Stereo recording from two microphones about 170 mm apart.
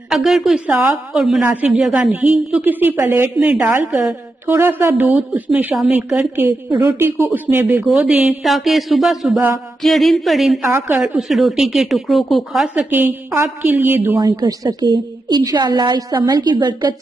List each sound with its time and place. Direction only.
0.1 s a woman's voice: centre (ahead or behind)
7.8 s speech: 5° right (ahead or behind)
10.6 s a woman's voice: 15° right (ahead or behind)
11.1 s speech: centre (ahead or behind)
14.3 s a woman's voice: 25° right (ahead or behind)